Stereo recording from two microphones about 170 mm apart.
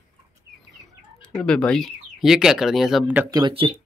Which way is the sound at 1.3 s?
5° left (ahead or behind).